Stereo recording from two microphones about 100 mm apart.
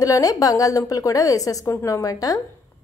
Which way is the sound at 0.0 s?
35° left (ahead or behind).